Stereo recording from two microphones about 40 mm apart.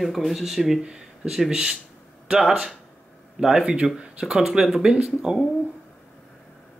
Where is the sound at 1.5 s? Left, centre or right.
Right.